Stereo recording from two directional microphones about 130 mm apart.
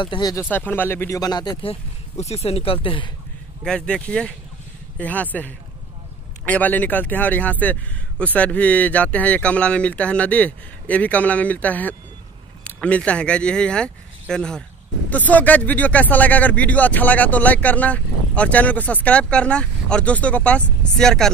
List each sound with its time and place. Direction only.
0.0 s speech: 35° left (ahead or behind)
0.4 s speech: 15° left (ahead or behind); by 1.6 s 30° left (ahead or behind)
1.6 s speech: 50° left (ahead or behind)
3.6 s speech: 5° left (ahead or behind)